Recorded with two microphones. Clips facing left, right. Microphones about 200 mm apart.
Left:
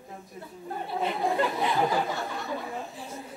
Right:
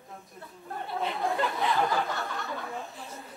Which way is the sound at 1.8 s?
5° left (ahead or behind).